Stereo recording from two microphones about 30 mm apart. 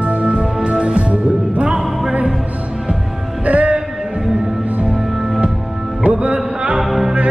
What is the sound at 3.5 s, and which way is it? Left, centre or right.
Music, right.